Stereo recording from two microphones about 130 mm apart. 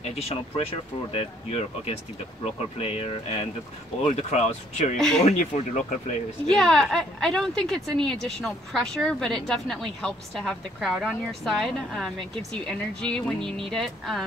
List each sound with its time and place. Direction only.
0.2 s speech: 45° left (ahead or behind)
4.9 s a woman's voice: 5° left (ahead or behind)
5.2 s speech: 75° left (ahead or behind)
6.5 s a woman's voice: 5° left (ahead or behind)